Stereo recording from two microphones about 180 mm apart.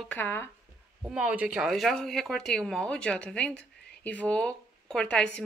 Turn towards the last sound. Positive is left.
turn(degrees=5)  # may be behind; listen again after turning